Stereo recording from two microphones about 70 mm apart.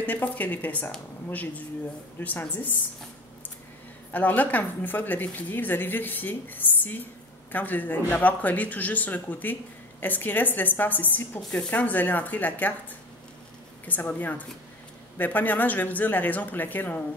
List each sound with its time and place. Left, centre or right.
0.0 s speech: left
4.1 s speech: left
13.8 s speech: left